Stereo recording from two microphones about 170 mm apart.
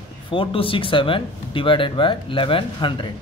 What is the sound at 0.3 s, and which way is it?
Speech, 30° left (ahead or behind).